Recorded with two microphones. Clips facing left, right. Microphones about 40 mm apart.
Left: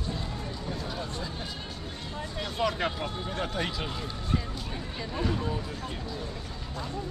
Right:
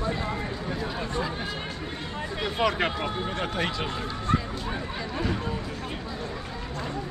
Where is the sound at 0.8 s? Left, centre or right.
Right.